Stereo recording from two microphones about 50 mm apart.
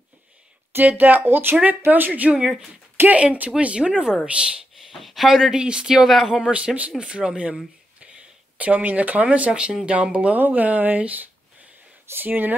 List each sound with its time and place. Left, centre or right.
0.8 s speech: right
1.9 s speech: right
2.3 s speech: centre
3.1 s speech: right
4.9 s speech: centre
6.5 s speech: right
8.5 s speech: right
9.5 s speech: centre; by 12.5 s right